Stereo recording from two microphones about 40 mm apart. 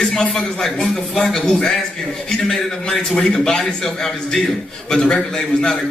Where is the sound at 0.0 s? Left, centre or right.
Centre.